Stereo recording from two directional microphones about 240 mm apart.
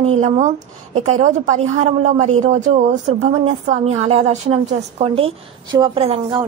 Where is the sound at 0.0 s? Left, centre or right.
Right.